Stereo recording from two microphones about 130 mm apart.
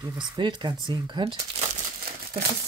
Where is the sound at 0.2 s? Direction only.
35° right (ahead or behind).